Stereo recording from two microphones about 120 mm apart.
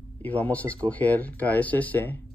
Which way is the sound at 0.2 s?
15° left (ahead or behind).